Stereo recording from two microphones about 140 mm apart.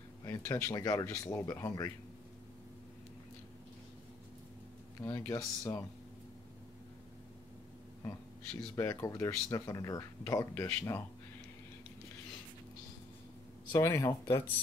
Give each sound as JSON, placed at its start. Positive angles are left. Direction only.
{"t": 0.2, "sound": "speech", "side_deg": 25}
{"t": 5.0, "sound": "speech", "side_deg": 20}
{"t": 8.0, "sound": "speech", "side_deg": 20}
{"t": 13.7, "sound": "speech", "side_deg": 20}